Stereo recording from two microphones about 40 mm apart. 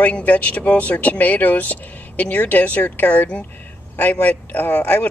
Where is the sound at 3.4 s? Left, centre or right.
Left.